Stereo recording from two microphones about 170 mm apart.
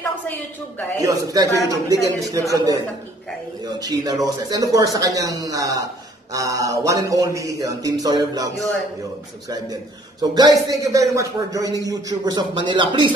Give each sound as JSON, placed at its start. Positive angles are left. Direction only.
{"t": 0.9, "sound": "speech", "side_deg": -20}
{"t": 10.2, "sound": "speech", "side_deg": -25}